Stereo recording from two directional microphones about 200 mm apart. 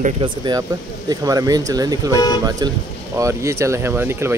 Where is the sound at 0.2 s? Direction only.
20° right (ahead or behind).